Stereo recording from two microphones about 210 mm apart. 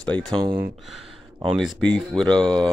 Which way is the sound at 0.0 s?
5° left (ahead or behind).